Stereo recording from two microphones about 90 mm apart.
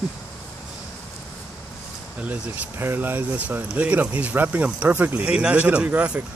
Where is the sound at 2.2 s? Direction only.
15° right (ahead or behind).